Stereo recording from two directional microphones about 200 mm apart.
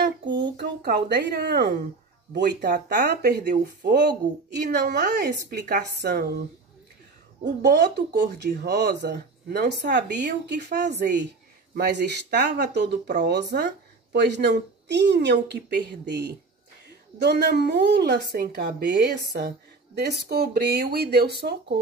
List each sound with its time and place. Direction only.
0.0 s a sound: 60° right (ahead or behind)
2.3 s speech: 55° right (ahead or behind)
7.4 s speech: 55° right (ahead or behind)